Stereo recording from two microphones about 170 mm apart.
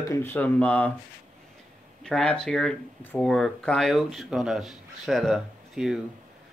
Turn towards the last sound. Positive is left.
turn(degrees=-5)  # may be behind; listen again after turning